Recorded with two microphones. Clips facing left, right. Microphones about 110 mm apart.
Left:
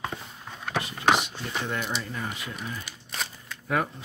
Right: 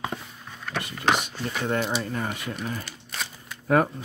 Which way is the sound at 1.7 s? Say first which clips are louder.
Right 5 dB; 45° right (ahead or behind).